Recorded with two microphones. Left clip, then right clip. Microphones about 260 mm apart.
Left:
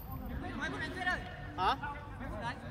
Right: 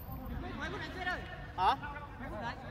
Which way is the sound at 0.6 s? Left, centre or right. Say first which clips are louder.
Left 3 dB; left.